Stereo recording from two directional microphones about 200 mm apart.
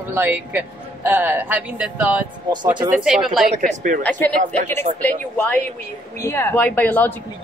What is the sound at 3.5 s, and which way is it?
Speech, 40° right (ahead or behind).